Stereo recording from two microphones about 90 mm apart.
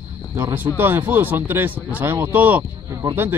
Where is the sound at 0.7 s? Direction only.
20° right (ahead or behind).